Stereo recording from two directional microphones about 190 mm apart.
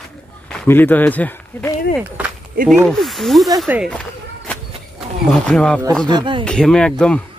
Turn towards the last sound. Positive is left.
turn(degrees=5)  # may be behind; listen again after turning